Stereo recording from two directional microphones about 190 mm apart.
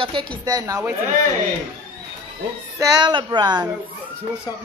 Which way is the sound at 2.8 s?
20° right (ahead or behind).